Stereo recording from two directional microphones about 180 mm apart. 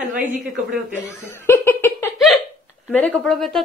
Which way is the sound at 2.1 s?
Centre (ahead or behind).